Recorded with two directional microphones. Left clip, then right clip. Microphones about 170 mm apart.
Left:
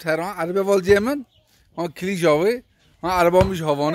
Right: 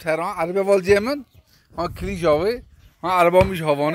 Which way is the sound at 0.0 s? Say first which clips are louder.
Right 1 dB; 25° left (ahead or behind).